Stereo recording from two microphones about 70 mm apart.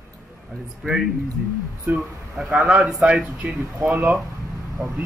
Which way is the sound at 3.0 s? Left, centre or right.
Centre.